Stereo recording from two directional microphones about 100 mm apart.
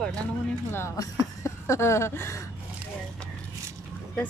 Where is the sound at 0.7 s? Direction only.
25° left (ahead or behind).